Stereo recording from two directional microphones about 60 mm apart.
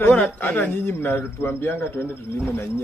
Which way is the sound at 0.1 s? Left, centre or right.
Left.